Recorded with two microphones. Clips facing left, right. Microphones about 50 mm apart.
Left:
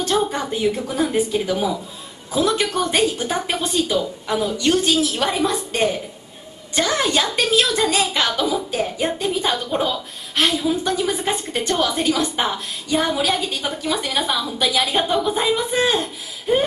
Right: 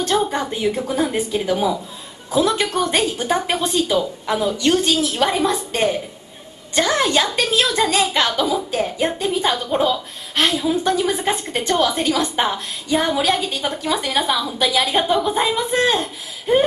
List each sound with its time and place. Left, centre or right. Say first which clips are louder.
0.0 s a woman's voice: right 1 dB; centre
15.5 s a woman's voice: right 1 dB; centre